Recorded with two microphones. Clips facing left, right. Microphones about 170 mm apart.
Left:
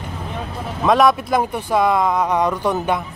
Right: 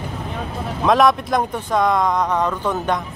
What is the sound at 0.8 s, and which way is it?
Speech, centre (ahead or behind).